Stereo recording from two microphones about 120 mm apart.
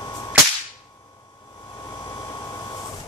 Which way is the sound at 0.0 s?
30° left (ahead or behind).